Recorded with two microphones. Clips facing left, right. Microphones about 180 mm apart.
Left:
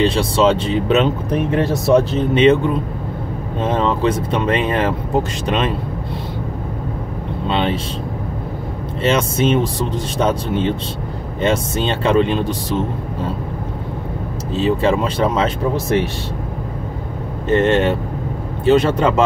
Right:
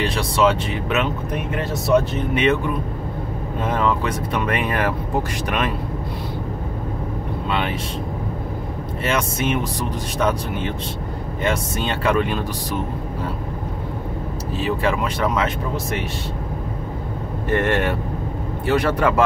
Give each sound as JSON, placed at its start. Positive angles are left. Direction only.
{"t": 0.0, "sound": "speech", "side_deg": 25}
{"t": 7.4, "sound": "speech", "side_deg": 25}
{"t": 9.0, "sound": "speech", "side_deg": 30}
{"t": 14.5, "sound": "speech", "side_deg": 25}
{"t": 17.5, "sound": "speech", "side_deg": 25}